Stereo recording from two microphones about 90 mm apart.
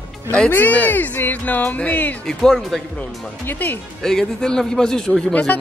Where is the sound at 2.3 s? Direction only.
5° left (ahead or behind).